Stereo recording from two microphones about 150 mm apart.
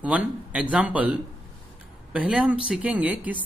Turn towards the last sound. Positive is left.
turn(degrees=-10)  # may be behind; listen again after turning